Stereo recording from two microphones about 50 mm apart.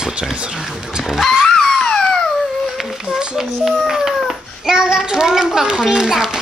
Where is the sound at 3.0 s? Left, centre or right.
Centre.